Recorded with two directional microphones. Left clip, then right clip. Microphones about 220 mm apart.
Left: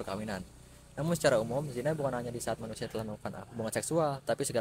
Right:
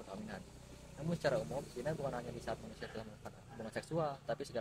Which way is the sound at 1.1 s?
45° left (ahead or behind).